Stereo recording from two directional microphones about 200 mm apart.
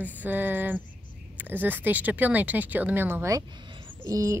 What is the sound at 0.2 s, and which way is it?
Speech, 10° right (ahead or behind).